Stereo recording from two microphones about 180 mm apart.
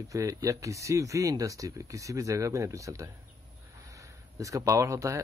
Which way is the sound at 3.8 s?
20° right (ahead or behind).